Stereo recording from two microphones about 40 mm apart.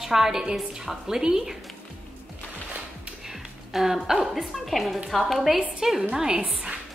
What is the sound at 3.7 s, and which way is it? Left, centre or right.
A woman's voice, centre.